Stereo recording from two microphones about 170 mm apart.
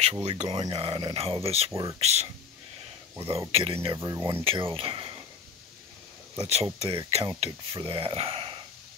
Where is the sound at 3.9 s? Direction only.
20° right (ahead or behind).